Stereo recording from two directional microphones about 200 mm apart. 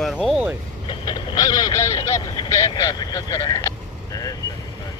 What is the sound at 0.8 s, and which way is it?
Speech, 20° left (ahead or behind).